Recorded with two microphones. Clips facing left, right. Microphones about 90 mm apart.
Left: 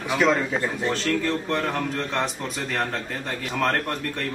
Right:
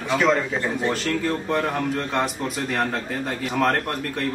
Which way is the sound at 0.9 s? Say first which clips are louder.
Even; 10° right (ahead or behind).